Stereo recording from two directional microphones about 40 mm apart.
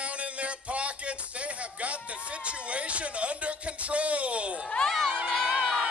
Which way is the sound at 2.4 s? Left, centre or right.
Right.